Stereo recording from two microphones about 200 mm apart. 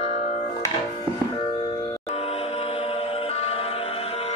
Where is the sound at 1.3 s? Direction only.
25° left (ahead or behind).